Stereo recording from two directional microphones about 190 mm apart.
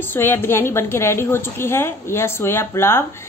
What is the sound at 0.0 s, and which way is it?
A woman's voice, 10° left (ahead or behind).